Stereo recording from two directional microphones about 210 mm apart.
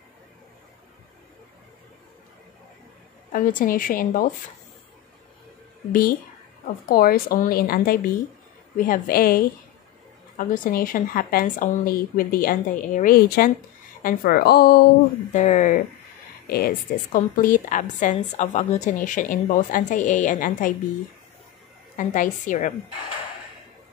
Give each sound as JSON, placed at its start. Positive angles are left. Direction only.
{"t": 3.3, "sound": "a woman's voice", "side_deg": 40}
{"t": 5.9, "sound": "speech", "side_deg": 45}
{"t": 15.3, "sound": "a woman's voice", "side_deg": 35}
{"t": 16.4, "sound": "a woman's voice", "side_deg": 45}
{"t": 21.9, "sound": "a woman's voice", "side_deg": 40}